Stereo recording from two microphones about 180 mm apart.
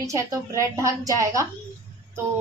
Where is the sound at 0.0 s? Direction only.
15° right (ahead or behind).